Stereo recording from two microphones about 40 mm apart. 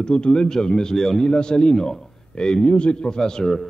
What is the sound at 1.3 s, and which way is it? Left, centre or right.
A man's voice, left.